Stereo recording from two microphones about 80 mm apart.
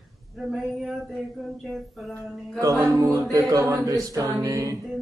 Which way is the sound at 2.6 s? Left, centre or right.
Right.